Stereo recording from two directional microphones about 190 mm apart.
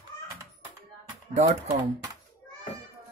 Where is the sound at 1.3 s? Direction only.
35° right (ahead or behind).